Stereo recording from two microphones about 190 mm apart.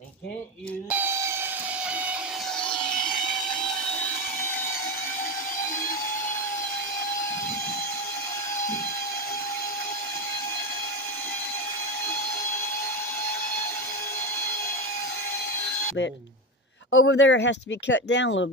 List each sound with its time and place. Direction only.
0.8 s steam whistle: 10° right (ahead or behind)
2.6 s a sound: 5° left (ahead or behind)
16.9 s speech: 75° left (ahead or behind)